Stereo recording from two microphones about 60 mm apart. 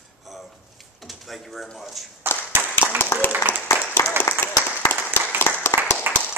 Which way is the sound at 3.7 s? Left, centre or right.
Left.